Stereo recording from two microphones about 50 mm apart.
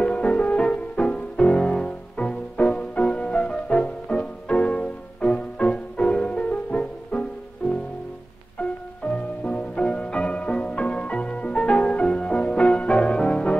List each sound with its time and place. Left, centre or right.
0.0 s music: left
8.5 s music: left